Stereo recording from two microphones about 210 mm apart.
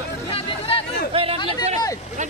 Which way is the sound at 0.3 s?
25° left (ahead or behind).